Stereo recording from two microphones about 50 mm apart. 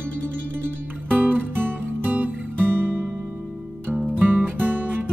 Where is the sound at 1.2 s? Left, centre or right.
Right.